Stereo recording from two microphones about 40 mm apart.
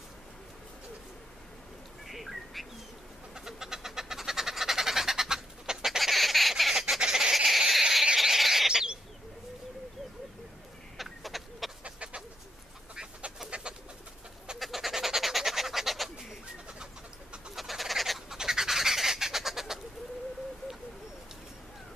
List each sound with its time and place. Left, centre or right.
2.0 s bird: centre
3.3 s bird: centre
5.9 s squawk: centre
7.0 s a sound: centre
8.2 s bird: centre
8.6 s bird: centre
11.0 s a sound: centre
11.8 s bird: right
13.4 s bird: centre
14.6 s bird: centre
17.6 s fowl: centre
18.4 s bird: centre